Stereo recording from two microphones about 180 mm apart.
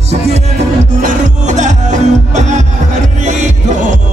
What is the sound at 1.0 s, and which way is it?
Music, 45° right (ahead or behind).